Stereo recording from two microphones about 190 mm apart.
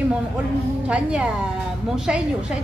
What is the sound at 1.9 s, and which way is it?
Speech, 5° right (ahead or behind).